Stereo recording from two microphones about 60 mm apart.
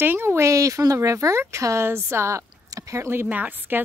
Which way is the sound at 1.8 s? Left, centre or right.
Right.